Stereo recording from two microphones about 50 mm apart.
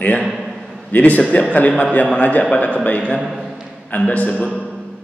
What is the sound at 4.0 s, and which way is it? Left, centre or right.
Speech, left.